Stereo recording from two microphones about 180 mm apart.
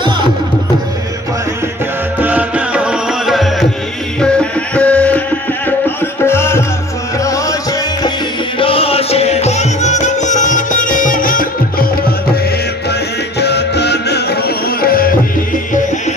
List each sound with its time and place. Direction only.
2.1 s music: 10° right (ahead or behind); by 6.6 s 15° left (ahead or behind)
8.5 s music: 30° left (ahead or behind); by 11.9 s 50° left (ahead or behind)
13.4 s music: 70° left (ahead or behind)